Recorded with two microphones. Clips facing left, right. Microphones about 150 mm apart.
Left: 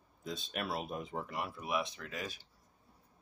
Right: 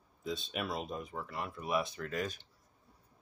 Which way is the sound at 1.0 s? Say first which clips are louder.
Left 1 dB; 25° left (ahead or behind).